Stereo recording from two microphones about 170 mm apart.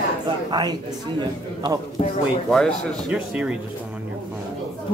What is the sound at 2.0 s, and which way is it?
Speech, 35° left (ahead or behind).